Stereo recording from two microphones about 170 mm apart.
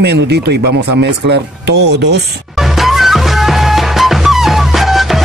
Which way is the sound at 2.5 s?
Centre (ahead or behind).